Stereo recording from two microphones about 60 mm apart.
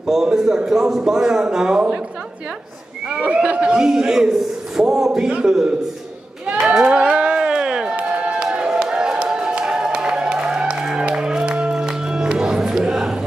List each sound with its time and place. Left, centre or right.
0.0 s a man's voice: centre
3.1 s a man's voice: centre
6.4 s a sound: centre